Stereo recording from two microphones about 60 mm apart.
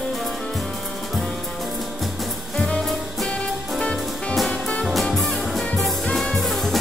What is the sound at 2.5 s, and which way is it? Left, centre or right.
Music, centre.